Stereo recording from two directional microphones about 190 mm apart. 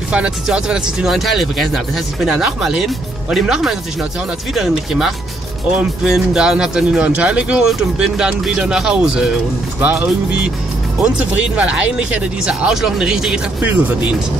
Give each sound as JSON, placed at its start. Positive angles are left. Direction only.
{"t": 0.1, "sound": "speech", "side_deg": -5}